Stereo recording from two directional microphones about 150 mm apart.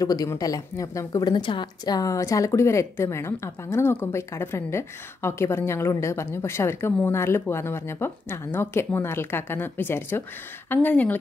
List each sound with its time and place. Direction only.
0.0 s a woman's voice: 25° left (ahead or behind)